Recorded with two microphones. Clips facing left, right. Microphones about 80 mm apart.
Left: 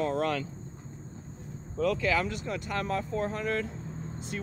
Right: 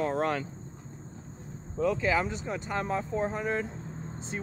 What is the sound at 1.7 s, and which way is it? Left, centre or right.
Speech, centre.